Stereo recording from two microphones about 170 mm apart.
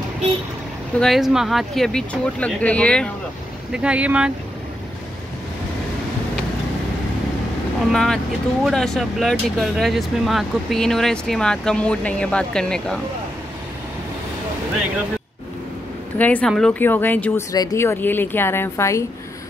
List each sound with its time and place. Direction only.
0.9 s speech: centre (ahead or behind)
3.7 s speech: 5° right (ahead or behind)
7.9 s speech: centre (ahead or behind)
16.2 s speech: 10° left (ahead or behind)